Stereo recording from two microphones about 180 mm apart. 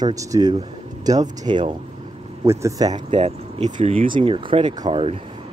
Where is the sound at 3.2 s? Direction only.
30° right (ahead or behind).